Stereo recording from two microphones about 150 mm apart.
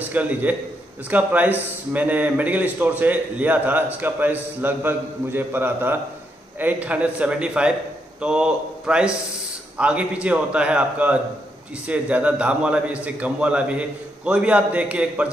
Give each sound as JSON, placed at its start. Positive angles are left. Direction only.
{"t": 0.1, "sound": "a man's voice", "side_deg": -10}